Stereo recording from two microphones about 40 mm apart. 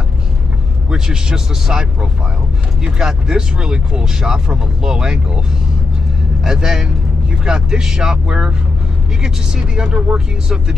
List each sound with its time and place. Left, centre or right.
0.8 s speech: centre
6.4 s speech: centre